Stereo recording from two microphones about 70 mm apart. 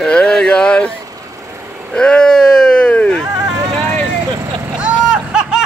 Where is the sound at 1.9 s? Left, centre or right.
Centre.